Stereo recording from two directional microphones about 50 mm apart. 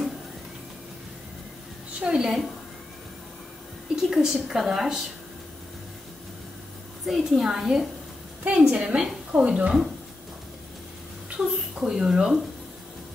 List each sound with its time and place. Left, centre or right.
2.0 s a woman's voice: centre
3.9 s a woman's voice: centre
7.1 s a woman's voice: centre
8.5 s a woman's voice: right
11.2 s a sound: centre